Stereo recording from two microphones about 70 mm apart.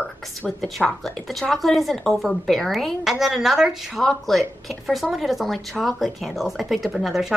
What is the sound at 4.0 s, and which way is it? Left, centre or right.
A woman's voice, centre.